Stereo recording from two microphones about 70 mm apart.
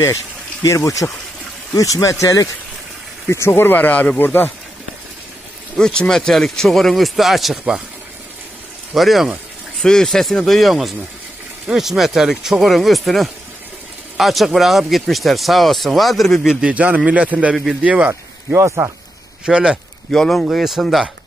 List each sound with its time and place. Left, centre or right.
0.7 s speech: left
5.8 s speech: centre
8.9 s speech: centre
16.6 s a man's voice: centre
18.5 s speech: right
19.4 s speech: centre
20.1 s speech: centre